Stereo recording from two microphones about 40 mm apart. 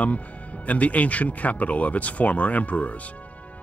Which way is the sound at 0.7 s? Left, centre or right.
Left.